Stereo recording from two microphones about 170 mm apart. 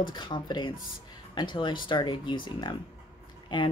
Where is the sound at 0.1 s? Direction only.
25° left (ahead or behind).